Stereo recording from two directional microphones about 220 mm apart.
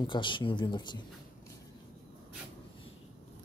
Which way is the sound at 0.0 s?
20° left (ahead or behind).